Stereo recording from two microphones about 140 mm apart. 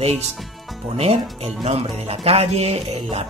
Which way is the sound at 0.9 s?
50° right (ahead or behind).